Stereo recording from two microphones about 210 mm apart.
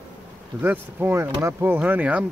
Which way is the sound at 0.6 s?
10° right (ahead or behind).